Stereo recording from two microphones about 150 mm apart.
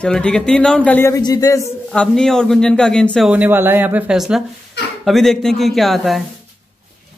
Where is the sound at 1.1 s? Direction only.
25° left (ahead or behind).